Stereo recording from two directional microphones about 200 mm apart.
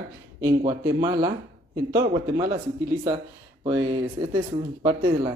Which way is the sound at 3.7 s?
20° right (ahead or behind).